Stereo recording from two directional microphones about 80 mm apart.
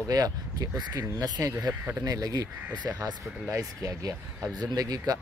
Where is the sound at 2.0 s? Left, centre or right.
Right.